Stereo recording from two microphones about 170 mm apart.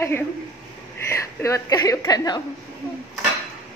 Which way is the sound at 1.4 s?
20° left (ahead or behind).